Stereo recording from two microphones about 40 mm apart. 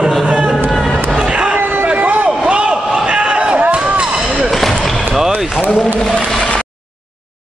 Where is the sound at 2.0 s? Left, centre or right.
Right.